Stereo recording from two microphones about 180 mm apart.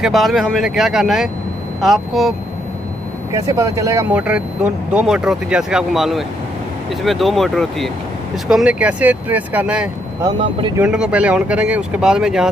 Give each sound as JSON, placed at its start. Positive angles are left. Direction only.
{"t": 0.0, "sound": "speech", "side_deg": 0}
{"t": 3.3, "sound": "speech", "side_deg": -15}
{"t": 10.2, "sound": "speech", "side_deg": -25}
{"t": 10.8, "sound": "speech", "side_deg": -5}